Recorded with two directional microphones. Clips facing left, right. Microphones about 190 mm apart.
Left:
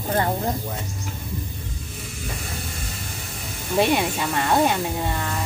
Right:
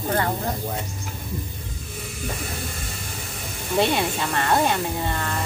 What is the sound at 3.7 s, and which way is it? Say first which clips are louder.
Speech: left 1 dB; 10° left (ahead or behind).